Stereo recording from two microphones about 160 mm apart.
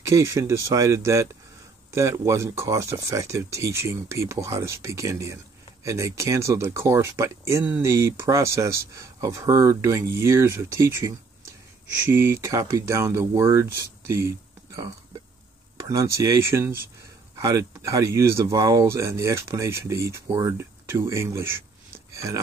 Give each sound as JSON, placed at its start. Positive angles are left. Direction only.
{"t": 0.0, "sound": "speech", "side_deg": -20}
{"t": 15.8, "sound": "speech", "side_deg": -20}